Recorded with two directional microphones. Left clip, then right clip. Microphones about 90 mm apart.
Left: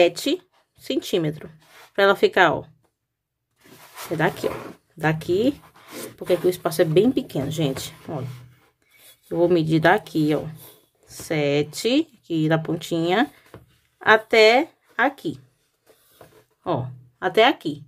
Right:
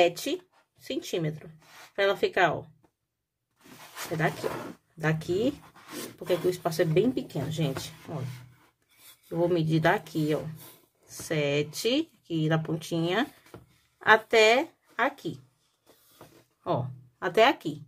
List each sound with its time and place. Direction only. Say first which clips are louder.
0.0 s speech: left 6 dB; 55° left (ahead or behind); by 2.7 s 90° left
4.9 s speech: left 7 dB; 50° left (ahead or behind)
7.2 s speech: left 7 dB; 75° left (ahead or behind)
9.3 s speech: left 7 dB; 50° left (ahead or behind)
16.6 s speech: left 4 dB; 35° left (ahead or behind)